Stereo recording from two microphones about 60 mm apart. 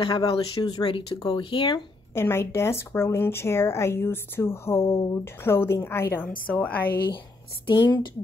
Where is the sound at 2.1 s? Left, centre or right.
Left.